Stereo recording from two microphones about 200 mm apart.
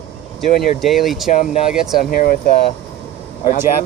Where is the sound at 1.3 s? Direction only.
40° left (ahead or behind).